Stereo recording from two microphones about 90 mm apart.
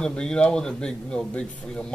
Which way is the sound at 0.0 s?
10° left (ahead or behind).